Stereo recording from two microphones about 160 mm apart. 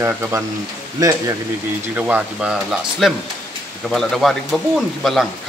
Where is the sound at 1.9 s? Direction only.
10° right (ahead or behind).